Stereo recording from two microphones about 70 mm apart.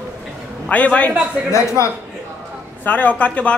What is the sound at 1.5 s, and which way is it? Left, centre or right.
Speech, left.